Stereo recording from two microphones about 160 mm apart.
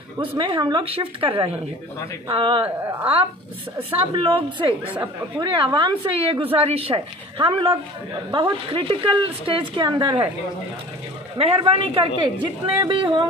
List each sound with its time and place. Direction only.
0.4 s a woman's voice: 30° right (ahead or behind)
2.6 s speech: 10° right (ahead or behind)
4.1 s speech: 30° right (ahead or behind)
4.8 s speech: 10° right (ahead or behind)
5.4 s a woman's voice: 30° right (ahead or behind)
11.3 s a woman's voice: 35° right (ahead or behind)